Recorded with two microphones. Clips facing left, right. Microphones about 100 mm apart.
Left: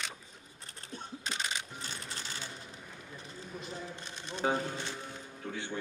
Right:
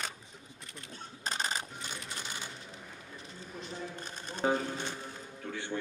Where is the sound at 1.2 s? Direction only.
40° right (ahead or behind).